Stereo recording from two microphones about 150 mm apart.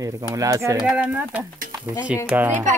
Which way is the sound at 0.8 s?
5° right (ahead or behind).